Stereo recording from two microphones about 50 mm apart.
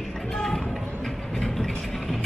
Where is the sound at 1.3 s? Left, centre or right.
Centre.